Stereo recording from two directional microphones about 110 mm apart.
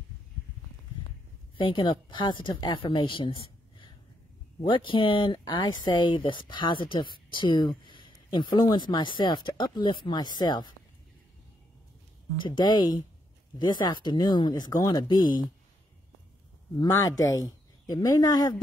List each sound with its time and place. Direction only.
1.6 s a woman's voice: 50° left (ahead or behind)
12.4 s a woman's voice: 45° left (ahead or behind)
16.7 s speech: 35° left (ahead or behind)